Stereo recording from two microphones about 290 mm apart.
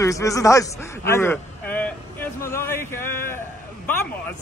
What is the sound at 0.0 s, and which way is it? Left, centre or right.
A man's voice, centre.